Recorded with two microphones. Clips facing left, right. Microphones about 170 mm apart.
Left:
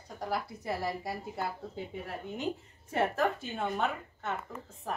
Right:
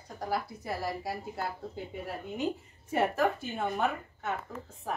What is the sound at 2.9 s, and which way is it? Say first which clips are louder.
A woman's voice: right 2 dB; 5° right (ahead or behind).